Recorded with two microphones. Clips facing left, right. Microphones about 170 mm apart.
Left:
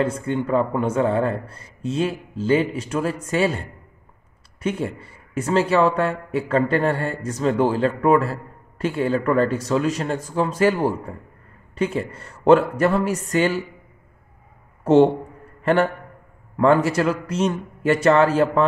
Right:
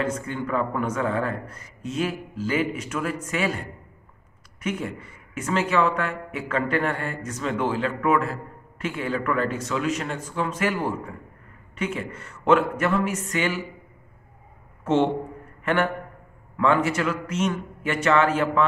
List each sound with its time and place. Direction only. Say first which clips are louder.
0.0 s a man's voice: left 5 dB; 30° left (ahead or behind)
15.6 s a man's voice: left 5 dB; 35° left (ahead or behind)